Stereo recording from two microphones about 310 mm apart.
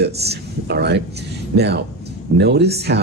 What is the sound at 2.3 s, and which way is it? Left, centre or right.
Speech, right.